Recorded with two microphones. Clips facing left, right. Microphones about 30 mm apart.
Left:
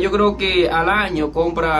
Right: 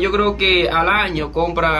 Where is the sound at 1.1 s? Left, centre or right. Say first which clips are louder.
Left 1 dB; right.